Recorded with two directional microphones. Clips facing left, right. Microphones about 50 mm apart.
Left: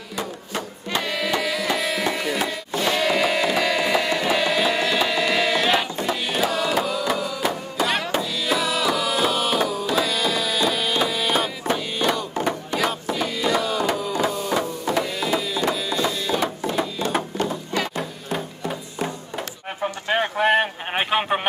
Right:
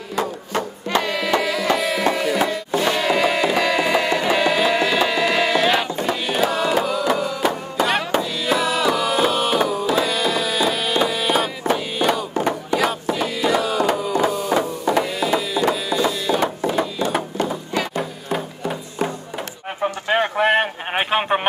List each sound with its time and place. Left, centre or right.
0.1 s music: right
1.3 s music: right
5.6 s a sound: centre
6.0 s music: centre
14.3 s printer: centre
17.9 s music: centre
19.8 s a sound: centre